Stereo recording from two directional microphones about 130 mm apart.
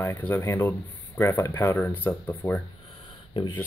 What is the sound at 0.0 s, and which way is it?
Speech, 15° left (ahead or behind).